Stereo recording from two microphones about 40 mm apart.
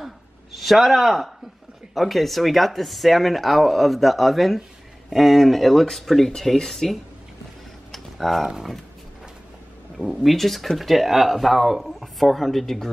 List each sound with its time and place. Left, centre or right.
0.5 s speech: centre
7.9 s a sound: centre
10.1 s speech: centre